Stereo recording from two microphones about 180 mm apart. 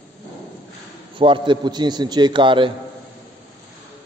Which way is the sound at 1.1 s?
25° right (ahead or behind).